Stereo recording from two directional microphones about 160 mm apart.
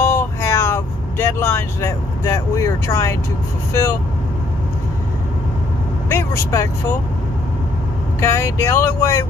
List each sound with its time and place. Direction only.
0.0 s vehicle: 15° left (ahead or behind)
6.0 s speech: 15° left (ahead or behind)
8.2 s speech: 15° left (ahead or behind)